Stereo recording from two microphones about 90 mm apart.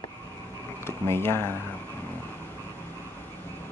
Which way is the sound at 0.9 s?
25° left (ahead or behind).